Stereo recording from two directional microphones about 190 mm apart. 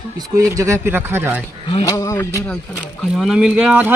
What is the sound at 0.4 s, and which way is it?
Speech, 15° right (ahead or behind).